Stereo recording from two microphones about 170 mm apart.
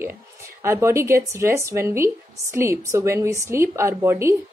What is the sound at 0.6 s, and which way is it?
Speech, 15° right (ahead or behind).